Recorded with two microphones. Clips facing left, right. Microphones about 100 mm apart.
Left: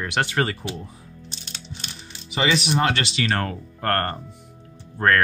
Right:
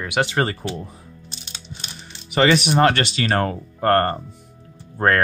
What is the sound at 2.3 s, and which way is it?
Speech, 55° right (ahead or behind).